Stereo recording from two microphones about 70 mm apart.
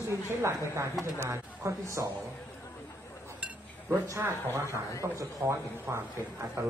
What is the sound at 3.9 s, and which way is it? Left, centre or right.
Speech, right.